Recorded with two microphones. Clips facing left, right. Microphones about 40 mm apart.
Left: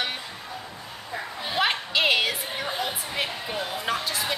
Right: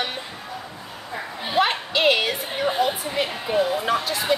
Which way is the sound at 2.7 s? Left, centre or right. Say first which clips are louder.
Right 9 dB; centre.